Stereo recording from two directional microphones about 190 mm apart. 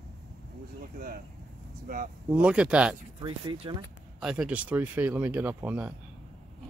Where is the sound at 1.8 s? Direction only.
45° right (ahead or behind).